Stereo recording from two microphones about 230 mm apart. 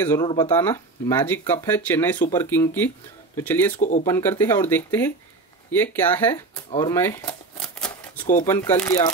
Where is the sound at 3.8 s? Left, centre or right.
Left.